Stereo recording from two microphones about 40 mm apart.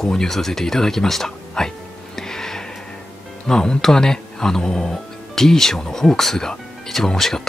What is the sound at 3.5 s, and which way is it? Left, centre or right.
Speech, centre.